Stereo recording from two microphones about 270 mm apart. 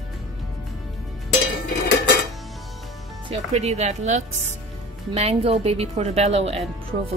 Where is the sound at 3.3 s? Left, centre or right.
Right.